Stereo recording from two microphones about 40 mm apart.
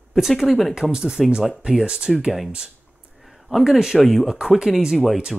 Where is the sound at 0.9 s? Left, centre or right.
Centre.